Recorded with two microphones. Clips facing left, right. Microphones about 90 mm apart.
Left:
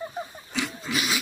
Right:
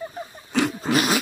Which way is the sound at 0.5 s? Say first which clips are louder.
Right 8 dB; 50° right (ahead or behind).